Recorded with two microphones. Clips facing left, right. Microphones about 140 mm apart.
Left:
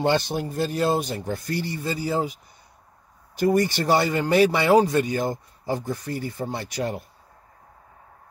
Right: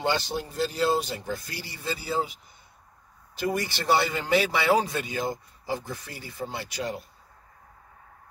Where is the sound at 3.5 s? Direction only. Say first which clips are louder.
Left 4 dB; 45° left (ahead or behind).